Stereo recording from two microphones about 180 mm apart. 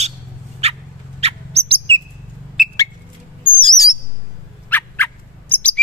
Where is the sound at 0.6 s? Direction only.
35° right (ahead or behind).